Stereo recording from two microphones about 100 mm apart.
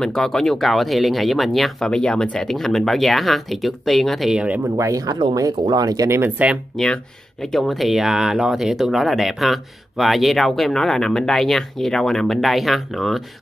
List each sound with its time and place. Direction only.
0.0 s speech: 5° left (ahead or behind)
4.7 s speech: 35° right (ahead or behind)
6.0 s speech: 25° right (ahead or behind)
7.5 s speech: centre (ahead or behind)